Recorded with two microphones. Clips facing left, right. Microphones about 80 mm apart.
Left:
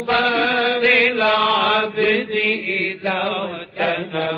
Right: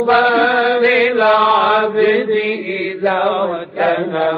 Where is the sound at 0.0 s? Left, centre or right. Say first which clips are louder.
Right 7 dB; right.